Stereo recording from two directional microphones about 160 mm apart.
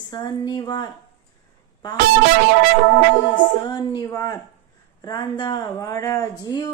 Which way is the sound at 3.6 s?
25° left (ahead or behind).